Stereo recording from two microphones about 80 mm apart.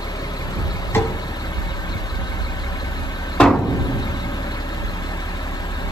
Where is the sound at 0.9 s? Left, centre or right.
Left.